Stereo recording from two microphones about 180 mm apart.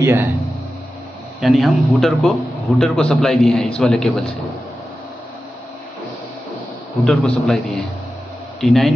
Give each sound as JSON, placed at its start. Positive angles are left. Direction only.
{"t": 0.0, "sound": "speech", "side_deg": -15}
{"t": 1.4, "sound": "a man's voice", "side_deg": 0}
{"t": 7.1, "sound": "a man's voice", "side_deg": 5}